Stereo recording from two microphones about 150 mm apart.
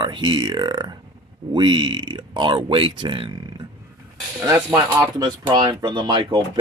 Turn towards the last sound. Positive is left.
turn(degrees=-30)  # may be behind; listen again after turning